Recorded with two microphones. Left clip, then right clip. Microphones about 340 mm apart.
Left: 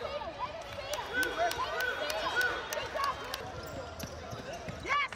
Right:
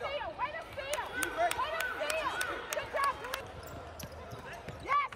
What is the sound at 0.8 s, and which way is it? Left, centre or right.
Run, right.